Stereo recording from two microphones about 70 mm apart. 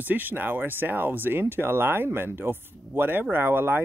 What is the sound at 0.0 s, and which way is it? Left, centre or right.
Speech, right.